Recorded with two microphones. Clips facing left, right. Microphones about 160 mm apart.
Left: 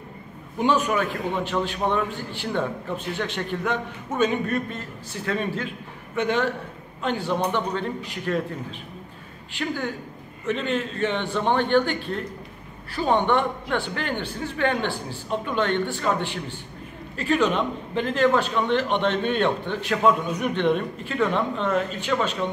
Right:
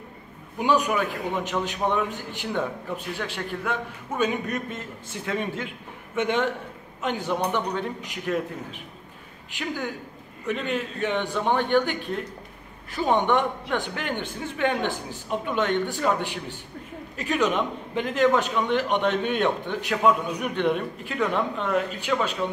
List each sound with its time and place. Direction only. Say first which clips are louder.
0.6 s a man's voice: left 1 dB; 10° right (ahead or behind)
9.6 s a man's voice: left 2 dB; 10° right (ahead or behind)